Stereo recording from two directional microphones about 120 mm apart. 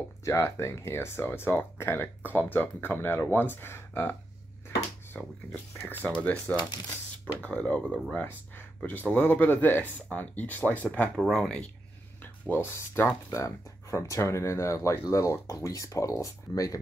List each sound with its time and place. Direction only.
0.2 s speech: 25° left (ahead or behind)
11.2 s speech: 5° left (ahead or behind)
12.2 s speech: 15° left (ahead or behind)